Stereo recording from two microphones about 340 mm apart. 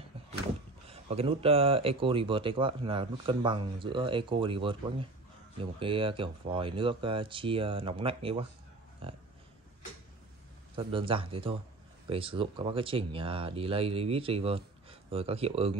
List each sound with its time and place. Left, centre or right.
0.8 s speech: centre
10.8 s speech: centre